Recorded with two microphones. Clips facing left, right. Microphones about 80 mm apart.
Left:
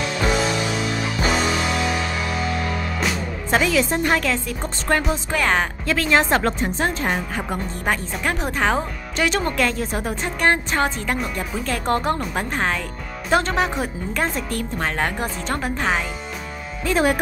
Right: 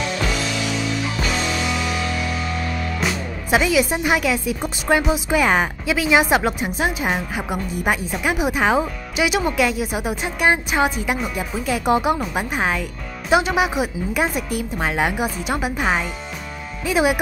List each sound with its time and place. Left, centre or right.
0.2 s music: left
2.2 s speech: centre